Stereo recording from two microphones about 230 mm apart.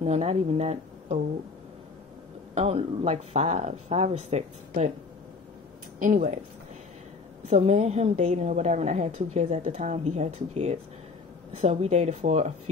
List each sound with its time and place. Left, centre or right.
0.0 s speech: right
2.5 s a woman's voice: right
5.9 s speech: right
7.4 s a woman's voice: right